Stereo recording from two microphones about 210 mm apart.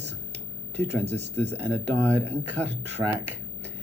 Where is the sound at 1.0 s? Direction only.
30° right (ahead or behind).